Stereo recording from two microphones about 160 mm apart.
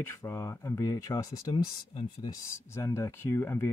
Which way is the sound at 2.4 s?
15° left (ahead or behind).